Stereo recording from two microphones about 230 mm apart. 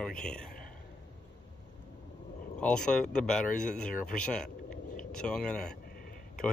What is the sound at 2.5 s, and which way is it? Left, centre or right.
Speech, centre.